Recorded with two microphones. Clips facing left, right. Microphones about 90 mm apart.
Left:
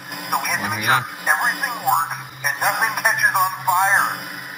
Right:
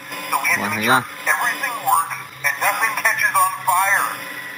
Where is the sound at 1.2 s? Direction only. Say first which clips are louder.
Left 1 dB; 15° left (ahead or behind).